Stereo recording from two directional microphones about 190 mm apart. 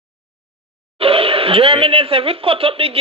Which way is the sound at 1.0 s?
30° right (ahead or behind).